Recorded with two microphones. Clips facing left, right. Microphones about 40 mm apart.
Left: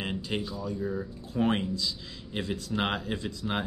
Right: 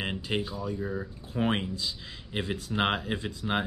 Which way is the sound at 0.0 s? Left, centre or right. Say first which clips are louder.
Right 1 dB; centre.